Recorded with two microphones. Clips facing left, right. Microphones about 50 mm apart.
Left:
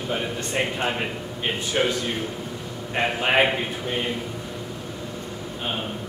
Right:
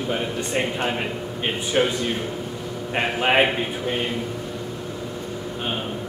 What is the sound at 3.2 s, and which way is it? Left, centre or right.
Speech, centre.